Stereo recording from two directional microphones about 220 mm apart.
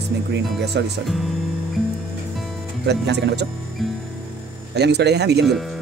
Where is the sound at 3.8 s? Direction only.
Centre (ahead or behind).